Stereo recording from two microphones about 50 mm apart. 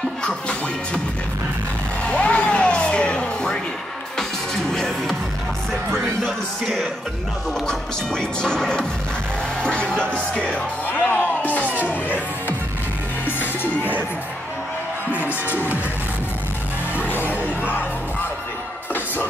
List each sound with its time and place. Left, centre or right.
0.2 s speech: centre
2.0 s music: left
4.7 s music: centre
7.6 s speech: centre; by 11.2 s left
11.6 s music: right
11.9 s music: left
15.4 s speech: left
17.0 s music: left